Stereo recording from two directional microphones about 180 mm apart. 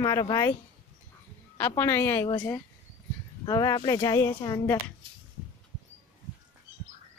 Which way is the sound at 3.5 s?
20° left (ahead or behind).